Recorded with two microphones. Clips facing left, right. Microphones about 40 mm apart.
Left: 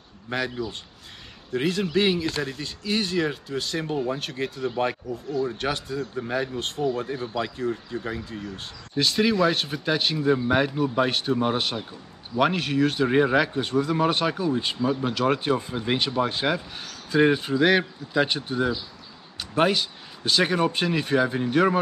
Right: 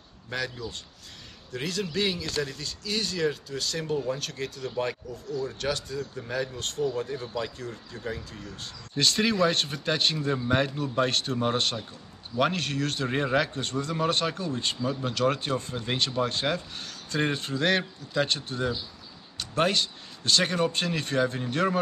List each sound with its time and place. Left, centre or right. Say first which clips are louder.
0.3 s speech: left 5 dB; left
8.9 s speech: left 3 dB; centre